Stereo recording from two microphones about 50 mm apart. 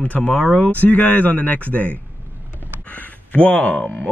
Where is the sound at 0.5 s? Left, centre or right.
Left.